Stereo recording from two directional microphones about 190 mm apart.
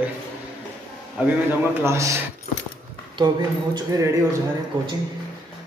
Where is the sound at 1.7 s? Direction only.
15° right (ahead or behind).